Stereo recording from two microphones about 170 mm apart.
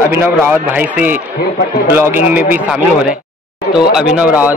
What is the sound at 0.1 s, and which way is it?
A man's voice, 15° right (ahead or behind).